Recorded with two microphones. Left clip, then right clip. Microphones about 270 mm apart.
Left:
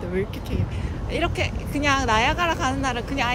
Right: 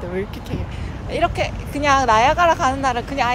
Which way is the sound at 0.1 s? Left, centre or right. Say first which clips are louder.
Right 1 dB; centre.